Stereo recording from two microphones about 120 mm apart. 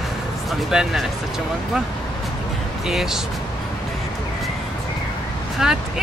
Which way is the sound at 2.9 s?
Centre (ahead or behind).